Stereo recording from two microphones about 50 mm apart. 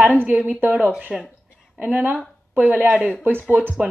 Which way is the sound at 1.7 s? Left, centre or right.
Right.